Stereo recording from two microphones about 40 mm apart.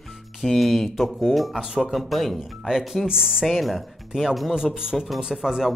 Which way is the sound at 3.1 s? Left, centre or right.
Centre.